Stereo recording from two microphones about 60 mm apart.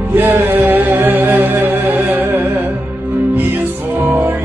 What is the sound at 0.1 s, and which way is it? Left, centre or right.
Music, right.